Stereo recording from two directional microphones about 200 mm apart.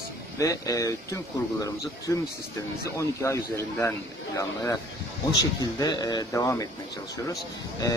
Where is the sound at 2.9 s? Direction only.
15° left (ahead or behind).